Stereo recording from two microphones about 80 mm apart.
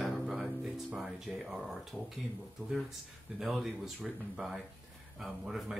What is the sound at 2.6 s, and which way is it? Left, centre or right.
Speech, right.